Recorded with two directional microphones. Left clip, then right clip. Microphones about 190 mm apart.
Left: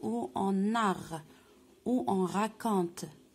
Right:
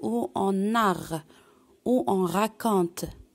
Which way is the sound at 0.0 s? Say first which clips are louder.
Right 6 dB; 40° right (ahead or behind).